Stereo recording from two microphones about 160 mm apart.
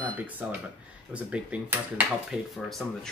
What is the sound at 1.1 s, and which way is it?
Speech, 10° right (ahead or behind).